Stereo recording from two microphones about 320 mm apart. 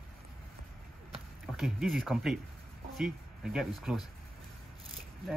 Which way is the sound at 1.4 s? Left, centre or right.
Centre.